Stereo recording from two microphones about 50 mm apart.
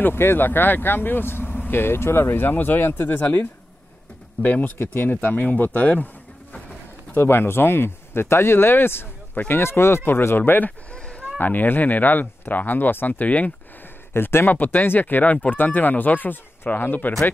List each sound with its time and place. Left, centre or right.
0.0 s speech: left
7.2 s speech: left
9.5 s speech: left
10.9 s a sound: left
11.3 s speech: left
14.1 s speech: left
14.5 s speech: left